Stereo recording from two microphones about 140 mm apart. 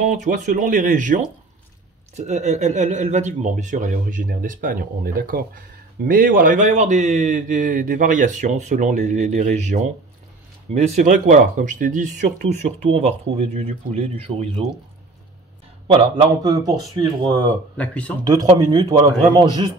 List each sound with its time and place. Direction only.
0.0 s speech: 65° right (ahead or behind); by 5.5 s 90° right
6.0 s speech: 75° right (ahead or behind); by 14.5 s 45° right (ahead or behind)
15.9 s a man's voice: 35° right (ahead or behind)
17.7 s speech: 10° left (ahead or behind)
18.2 s speech: 25° right (ahead or behind)